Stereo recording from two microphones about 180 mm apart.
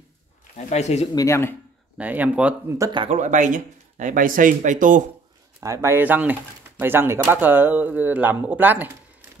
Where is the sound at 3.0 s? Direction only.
40° right (ahead or behind).